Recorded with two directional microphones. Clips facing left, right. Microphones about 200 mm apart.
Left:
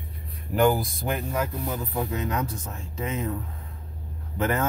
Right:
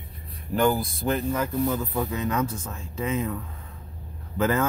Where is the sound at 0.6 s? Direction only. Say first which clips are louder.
Left 1 dB; 15° left (ahead or behind).